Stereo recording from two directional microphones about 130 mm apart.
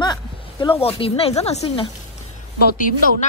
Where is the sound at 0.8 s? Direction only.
50° left (ahead or behind).